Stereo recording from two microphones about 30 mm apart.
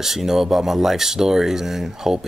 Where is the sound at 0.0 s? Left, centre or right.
Centre.